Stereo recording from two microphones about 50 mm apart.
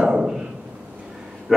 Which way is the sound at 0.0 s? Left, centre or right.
Centre.